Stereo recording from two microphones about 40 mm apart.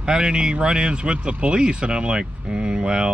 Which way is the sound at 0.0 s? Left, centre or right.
Right.